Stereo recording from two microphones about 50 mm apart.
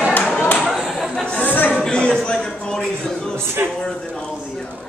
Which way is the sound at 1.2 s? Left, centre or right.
Left.